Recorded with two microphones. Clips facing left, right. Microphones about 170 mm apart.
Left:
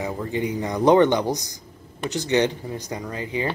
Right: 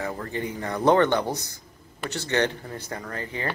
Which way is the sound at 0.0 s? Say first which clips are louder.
Left 4 dB; 15° left (ahead or behind).